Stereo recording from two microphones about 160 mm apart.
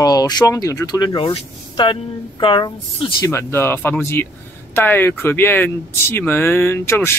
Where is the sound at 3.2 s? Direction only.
15° left (ahead or behind).